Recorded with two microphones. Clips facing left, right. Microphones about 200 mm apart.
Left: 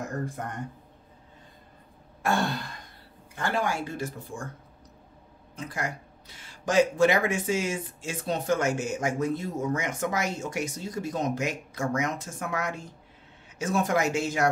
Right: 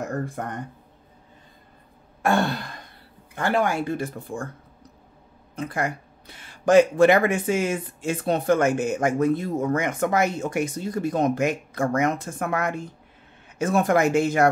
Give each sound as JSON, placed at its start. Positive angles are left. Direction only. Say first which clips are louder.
{"t": 3.3, "sound": "speech", "louder": "right 6 dB", "side_deg": -60}
{"t": 5.6, "sound": "speech", "louder": "right 6 dB", "side_deg": -55}